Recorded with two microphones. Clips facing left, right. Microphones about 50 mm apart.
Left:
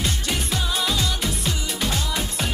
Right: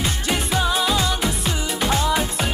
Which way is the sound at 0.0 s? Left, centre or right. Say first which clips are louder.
Right 3 dB; centre.